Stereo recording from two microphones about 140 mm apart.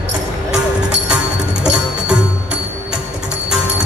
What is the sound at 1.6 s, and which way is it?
Music, 10° right (ahead or behind).